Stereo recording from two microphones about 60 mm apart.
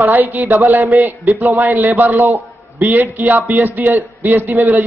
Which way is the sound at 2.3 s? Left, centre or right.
Right.